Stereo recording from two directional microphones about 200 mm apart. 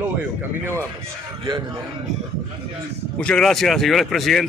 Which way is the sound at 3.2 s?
5° left (ahead or behind).